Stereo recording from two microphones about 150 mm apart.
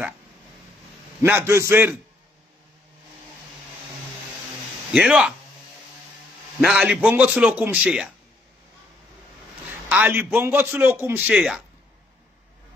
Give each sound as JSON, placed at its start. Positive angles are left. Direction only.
{"t": 1.2, "sound": "a man's voice", "side_deg": -15}
{"t": 4.9, "sound": "speech", "side_deg": -5}
{"t": 6.6, "sound": "a man's voice", "side_deg": -5}
{"t": 9.8, "sound": "a man's voice", "side_deg": -10}